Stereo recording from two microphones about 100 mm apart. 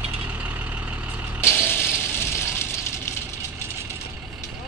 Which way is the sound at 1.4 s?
25° left (ahead or behind).